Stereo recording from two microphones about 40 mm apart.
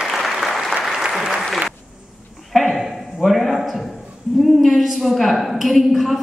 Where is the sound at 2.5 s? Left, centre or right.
Centre.